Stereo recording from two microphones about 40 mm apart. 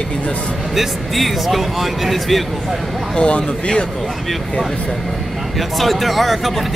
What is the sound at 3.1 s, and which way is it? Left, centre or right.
Speech, left.